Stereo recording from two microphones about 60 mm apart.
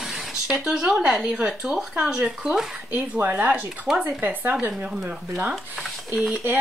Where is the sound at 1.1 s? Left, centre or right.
Centre.